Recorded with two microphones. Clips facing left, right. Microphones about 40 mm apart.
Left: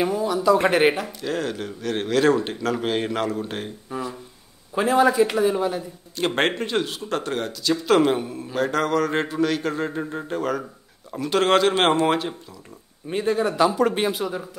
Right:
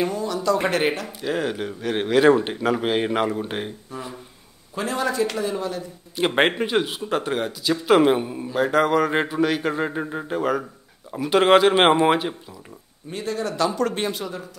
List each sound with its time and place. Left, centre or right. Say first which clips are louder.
0.0 s speech: left 2 dB; centre
1.2 s speech: right 3 dB; centre
4.7 s speech: left 6 dB; centre
6.1 s speech: right 2 dB; centre
13.1 s a man's voice: left 5 dB; centre